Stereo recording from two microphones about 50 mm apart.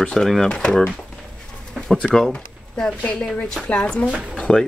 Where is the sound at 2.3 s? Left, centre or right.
Centre.